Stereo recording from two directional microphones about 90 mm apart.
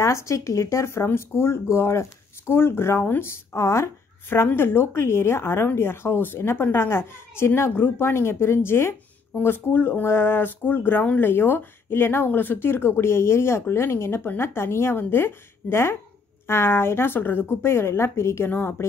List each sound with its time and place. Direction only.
0.0 s speech: 35° left (ahead or behind)